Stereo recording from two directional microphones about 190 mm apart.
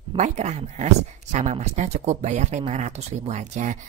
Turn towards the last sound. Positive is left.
turn(degrees=-40)  # may be behind; listen again after turning